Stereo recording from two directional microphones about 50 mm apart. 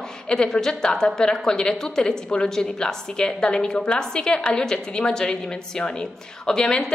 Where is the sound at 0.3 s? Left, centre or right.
Centre.